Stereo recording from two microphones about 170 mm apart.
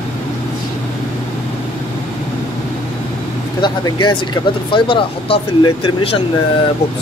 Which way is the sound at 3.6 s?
25° left (ahead or behind).